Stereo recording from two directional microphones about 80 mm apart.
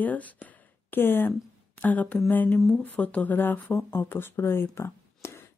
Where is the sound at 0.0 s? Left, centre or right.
Centre.